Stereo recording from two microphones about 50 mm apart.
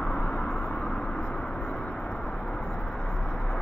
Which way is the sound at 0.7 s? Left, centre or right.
Left.